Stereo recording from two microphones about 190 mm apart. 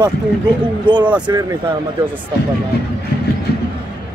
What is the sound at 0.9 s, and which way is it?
Speech, 25° right (ahead or behind).